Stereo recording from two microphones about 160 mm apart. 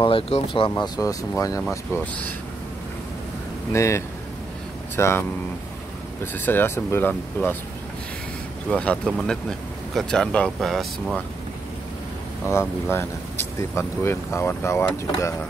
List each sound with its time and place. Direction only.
0.0 s speech: 35° left (ahead or behind); by 2.3 s 10° left (ahead or behind)
3.7 s speech: 20° left (ahead or behind)
6.3 s speech: 15° left (ahead or behind)
8.7 s speech: 5° left (ahead or behind)
12.4 s speech: 15° left (ahead or behind)